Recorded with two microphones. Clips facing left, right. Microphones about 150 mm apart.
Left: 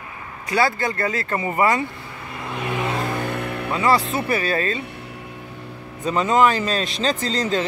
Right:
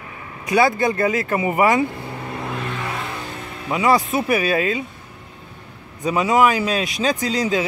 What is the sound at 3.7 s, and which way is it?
Speech, 15° right (ahead or behind).